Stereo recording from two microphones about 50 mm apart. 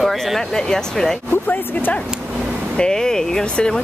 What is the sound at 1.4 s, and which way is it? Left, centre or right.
Speech, left.